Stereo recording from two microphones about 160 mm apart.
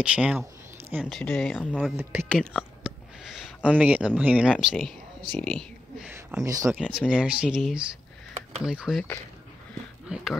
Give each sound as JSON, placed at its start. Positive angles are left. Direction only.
{"t": 0.0, "sound": "speech", "side_deg": -5}
{"t": 2.3, "sound": "a sound", "side_deg": -5}
{"t": 4.2, "sound": "speech", "side_deg": -10}
{"t": 5.3, "sound": "speech", "side_deg": 5}
{"t": 5.9, "sound": "a sound", "side_deg": -5}
{"t": 6.4, "sound": "speech", "side_deg": -20}
{"t": 6.7, "sound": "speech", "side_deg": -5}
{"t": 10.0, "sound": "speech", "side_deg": -5}